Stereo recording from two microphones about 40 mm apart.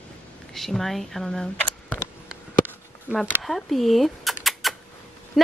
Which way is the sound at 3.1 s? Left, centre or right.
Right.